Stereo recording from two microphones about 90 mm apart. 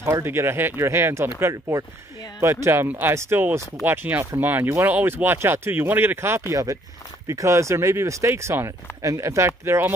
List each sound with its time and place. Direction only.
0.0 s speech: 30° right (ahead or behind)
1.5 s speech: 40° right (ahead or behind)
2.4 s speech: 30° right (ahead or behind)
6.5 s speech: 40° right (ahead or behind)